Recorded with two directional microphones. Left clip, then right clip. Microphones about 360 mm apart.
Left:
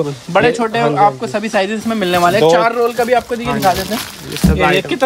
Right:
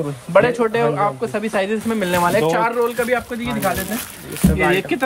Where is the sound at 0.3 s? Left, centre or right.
Centre.